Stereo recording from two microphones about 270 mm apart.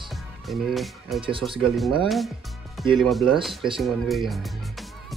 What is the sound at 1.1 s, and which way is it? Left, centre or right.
Speech, centre.